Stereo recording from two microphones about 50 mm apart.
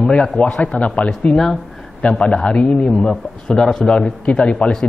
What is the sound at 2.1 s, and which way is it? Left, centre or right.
A man's voice, left.